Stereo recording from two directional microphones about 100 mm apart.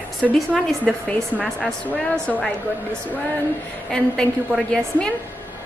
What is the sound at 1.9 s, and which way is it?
Speech, 15° left (ahead or behind).